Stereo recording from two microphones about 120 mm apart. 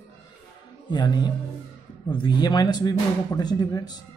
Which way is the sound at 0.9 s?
35° left (ahead or behind).